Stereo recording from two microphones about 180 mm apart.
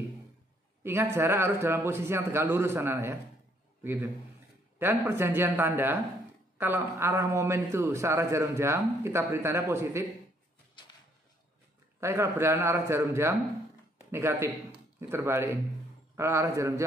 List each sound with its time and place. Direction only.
0.8 s a man's voice: 10° right (ahead or behind)
12.0 s a man's voice: 15° right (ahead or behind)